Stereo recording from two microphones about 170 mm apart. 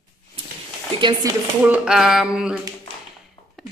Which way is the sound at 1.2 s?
20° right (ahead or behind).